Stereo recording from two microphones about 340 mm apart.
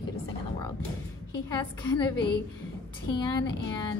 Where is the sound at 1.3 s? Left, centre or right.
Centre.